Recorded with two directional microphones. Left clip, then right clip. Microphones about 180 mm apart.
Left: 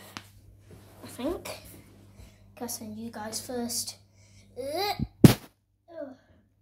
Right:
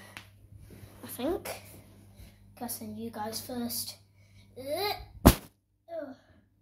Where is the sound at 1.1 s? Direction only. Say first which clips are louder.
Even; centre (ahead or behind).